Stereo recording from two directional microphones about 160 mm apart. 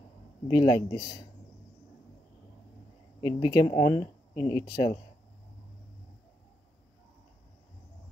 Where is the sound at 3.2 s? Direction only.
25° left (ahead or behind).